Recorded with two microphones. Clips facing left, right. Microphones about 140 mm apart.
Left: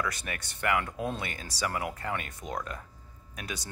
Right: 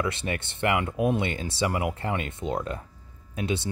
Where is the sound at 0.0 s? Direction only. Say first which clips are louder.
Right 6 dB; 25° right (ahead or behind).